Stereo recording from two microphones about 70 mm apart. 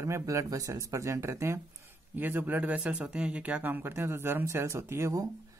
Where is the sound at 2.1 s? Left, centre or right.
Right.